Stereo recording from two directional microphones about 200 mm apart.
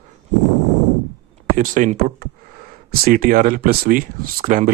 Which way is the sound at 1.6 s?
40° right (ahead or behind).